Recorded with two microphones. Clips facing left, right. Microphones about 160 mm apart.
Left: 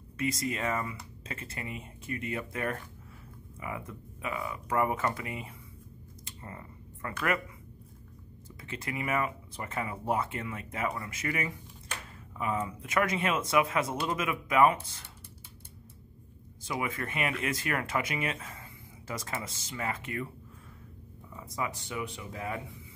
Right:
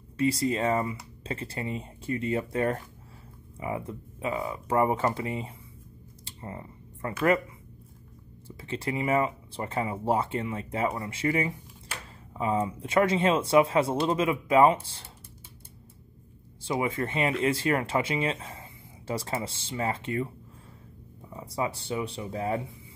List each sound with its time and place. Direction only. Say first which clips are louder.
0.2 s speech: right 6 dB; 30° right (ahead or behind)
6.2 s computer keyboard: right 6 dB; 25° right (ahead or behind)
8.5 s speech: right 7 dB; 30° right (ahead or behind)
16.6 s speech: right 6 dB; 30° right (ahead or behind)
21.3 s speech: right 5 dB; 30° right (ahead or behind)